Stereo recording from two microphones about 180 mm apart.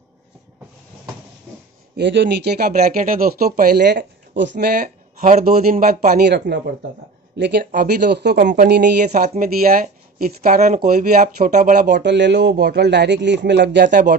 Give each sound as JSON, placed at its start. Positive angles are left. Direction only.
{"t": 2.0, "sound": "speech", "side_deg": -75}
{"t": 6.2, "sound": "a man's voice", "side_deg": -70}
{"t": 7.7, "sound": "speech", "side_deg": -60}
{"t": 9.0, "sound": "speech", "side_deg": -40}
{"t": 12.0, "sound": "a man's voice", "side_deg": -75}